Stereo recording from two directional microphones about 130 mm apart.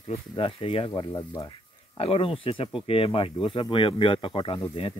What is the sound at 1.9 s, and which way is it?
Speech, 45° left (ahead or behind).